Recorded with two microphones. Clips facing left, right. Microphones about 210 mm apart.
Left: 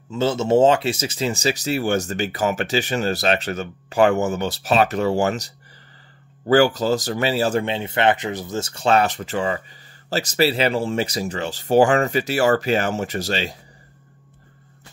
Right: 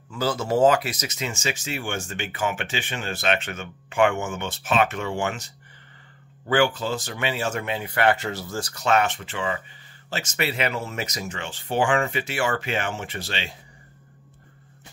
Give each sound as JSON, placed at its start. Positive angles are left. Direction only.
{"t": 0.1, "sound": "speech", "side_deg": 25}